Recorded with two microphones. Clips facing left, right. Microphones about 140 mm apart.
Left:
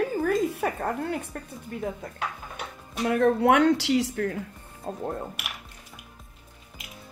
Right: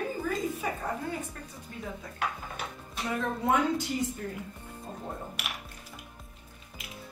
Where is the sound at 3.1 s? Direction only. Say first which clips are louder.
Left 8 dB; 65° left (ahead or behind).